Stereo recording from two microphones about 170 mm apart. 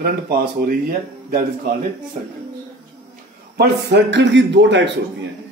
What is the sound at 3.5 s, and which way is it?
Speech, 75° right (ahead or behind).